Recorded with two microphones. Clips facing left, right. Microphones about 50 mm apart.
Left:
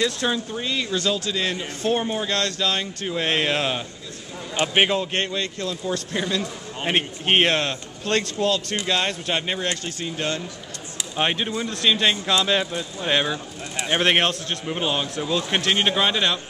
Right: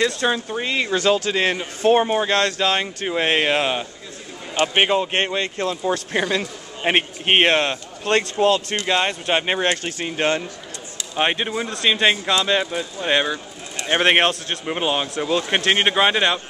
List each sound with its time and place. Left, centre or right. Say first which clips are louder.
0.0 s a man's voice: right 3 dB; right
5.0 s a man's voice: right 3 dB; right
11.1 s a man's voice: right 3 dB; centre
12.3 s a man's voice: right 2 dB; centre; by 16.3 s right